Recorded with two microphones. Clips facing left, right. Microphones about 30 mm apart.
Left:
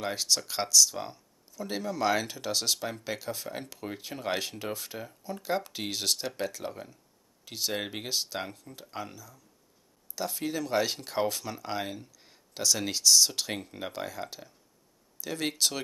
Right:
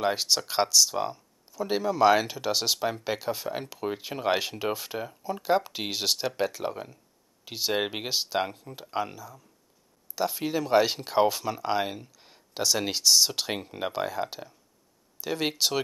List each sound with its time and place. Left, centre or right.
0.0 s speech: right